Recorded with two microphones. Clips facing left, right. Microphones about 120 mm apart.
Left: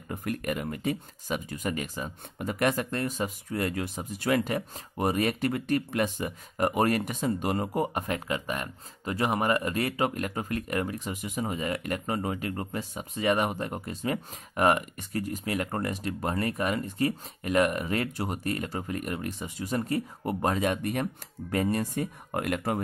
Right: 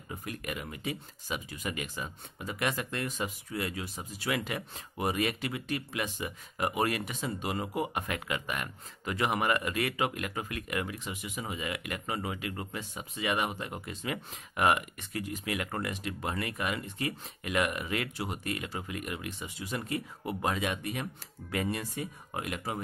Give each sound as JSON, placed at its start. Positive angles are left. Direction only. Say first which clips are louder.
{"t": 0.1, "sound": "speech", "louder": "left 7 dB", "side_deg": 55}